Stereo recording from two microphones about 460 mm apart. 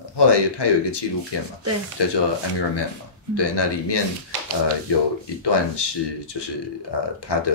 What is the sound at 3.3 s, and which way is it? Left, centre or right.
Speech, left.